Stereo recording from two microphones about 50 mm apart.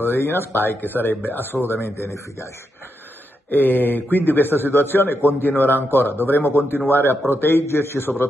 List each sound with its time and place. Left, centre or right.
0.0 s a man's voice: left
3.4 s a man's voice: left
7.6 s a man's voice: left